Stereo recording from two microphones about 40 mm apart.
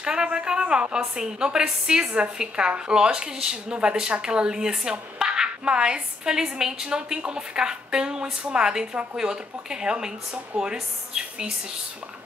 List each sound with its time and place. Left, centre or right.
0.0 s a woman's voice: right